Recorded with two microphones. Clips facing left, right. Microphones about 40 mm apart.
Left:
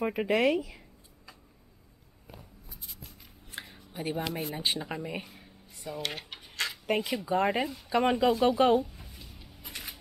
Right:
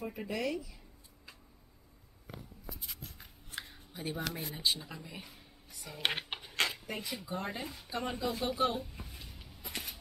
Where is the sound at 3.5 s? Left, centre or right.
Left.